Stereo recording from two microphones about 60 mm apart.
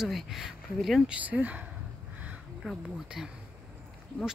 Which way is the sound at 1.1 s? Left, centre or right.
Right.